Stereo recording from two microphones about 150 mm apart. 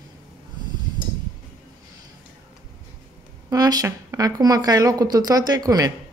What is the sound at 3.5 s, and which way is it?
Speech, 25° right (ahead or behind).